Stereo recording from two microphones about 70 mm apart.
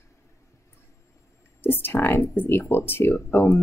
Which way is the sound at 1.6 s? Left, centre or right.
Left.